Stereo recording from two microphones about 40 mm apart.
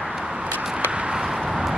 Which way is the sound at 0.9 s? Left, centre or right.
Right.